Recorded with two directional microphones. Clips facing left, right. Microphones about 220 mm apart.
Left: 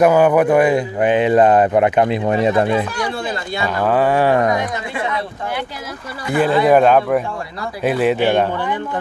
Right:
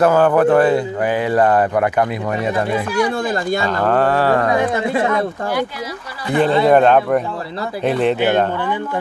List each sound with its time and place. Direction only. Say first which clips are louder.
0.0 s speech: left 1 dB; 15° left (ahead or behind)
3.3 s speech: right 5 dB; 45° right (ahead or behind)
3.6 s speech: left 3 dB; 10° left (ahead or behind)
4.5 s speech: right 3 dB; 30° right (ahead or behind)
6.3 s speech: even; 5° left (ahead or behind)